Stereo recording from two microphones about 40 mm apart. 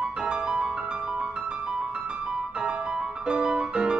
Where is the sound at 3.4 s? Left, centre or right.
Centre.